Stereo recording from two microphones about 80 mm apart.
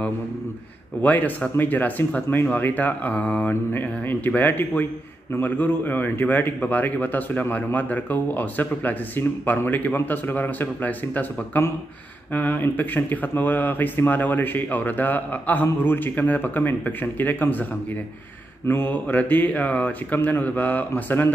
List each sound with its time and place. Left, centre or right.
1.0 s speech: left
18.7 s speech: left